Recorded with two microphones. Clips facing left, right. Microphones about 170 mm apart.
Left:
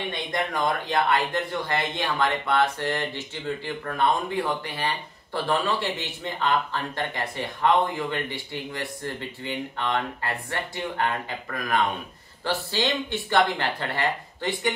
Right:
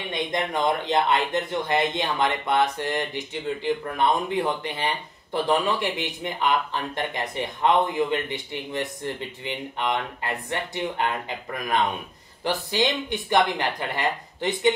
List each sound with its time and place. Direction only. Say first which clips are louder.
0.1 s speech: right 7 dB; 20° right (ahead or behind)